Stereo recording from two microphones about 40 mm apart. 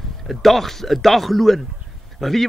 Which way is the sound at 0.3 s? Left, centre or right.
Centre.